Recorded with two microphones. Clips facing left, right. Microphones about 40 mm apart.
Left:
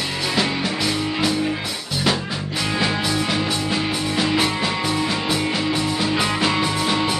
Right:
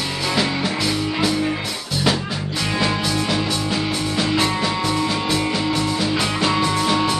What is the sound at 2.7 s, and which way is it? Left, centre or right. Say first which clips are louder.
Music: even; centre.